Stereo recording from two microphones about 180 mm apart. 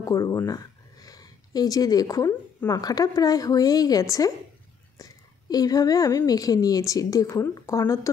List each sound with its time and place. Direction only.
0.0 s a woman's voice: 20° left (ahead or behind)